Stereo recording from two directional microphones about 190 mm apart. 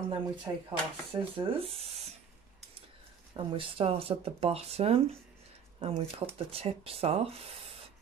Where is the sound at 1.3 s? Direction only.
30° right (ahead or behind).